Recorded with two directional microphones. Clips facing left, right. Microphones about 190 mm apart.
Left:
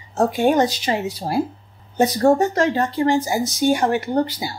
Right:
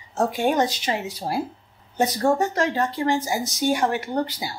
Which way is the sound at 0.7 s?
35° left (ahead or behind).